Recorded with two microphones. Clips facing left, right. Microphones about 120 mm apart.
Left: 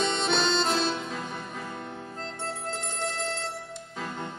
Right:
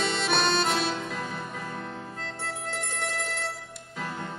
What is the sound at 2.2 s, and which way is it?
Music, 30° left (ahead or behind).